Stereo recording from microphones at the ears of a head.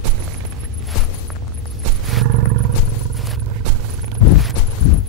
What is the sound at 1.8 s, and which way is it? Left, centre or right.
Roaring cats, right.